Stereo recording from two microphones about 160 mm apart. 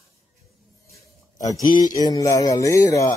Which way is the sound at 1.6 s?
25° left (ahead or behind).